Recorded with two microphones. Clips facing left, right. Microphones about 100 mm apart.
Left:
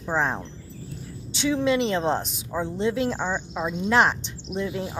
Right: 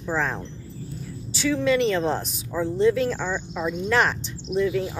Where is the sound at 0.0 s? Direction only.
25° left (ahead or behind).